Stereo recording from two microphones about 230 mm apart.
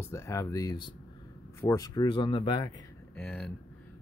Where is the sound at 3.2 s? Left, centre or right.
Centre.